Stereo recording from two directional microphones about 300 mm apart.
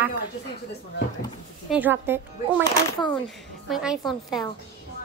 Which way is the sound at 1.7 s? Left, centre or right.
Centre.